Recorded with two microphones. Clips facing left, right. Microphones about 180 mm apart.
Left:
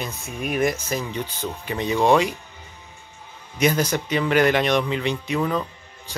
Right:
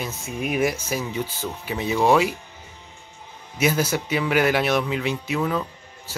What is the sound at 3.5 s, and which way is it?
Speech, 5° right (ahead or behind).